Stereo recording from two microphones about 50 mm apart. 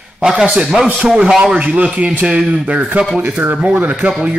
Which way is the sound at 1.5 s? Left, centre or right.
Right.